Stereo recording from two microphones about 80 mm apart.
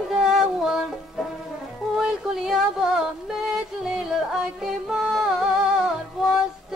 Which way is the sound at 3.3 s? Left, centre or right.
Centre.